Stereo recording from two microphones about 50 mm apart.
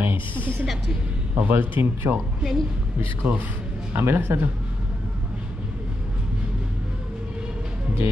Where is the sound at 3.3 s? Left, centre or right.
Right.